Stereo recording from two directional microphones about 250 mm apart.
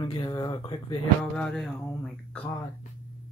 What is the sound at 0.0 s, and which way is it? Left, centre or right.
Speech, centre.